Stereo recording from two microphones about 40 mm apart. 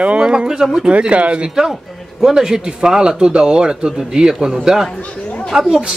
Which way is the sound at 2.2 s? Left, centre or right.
Centre.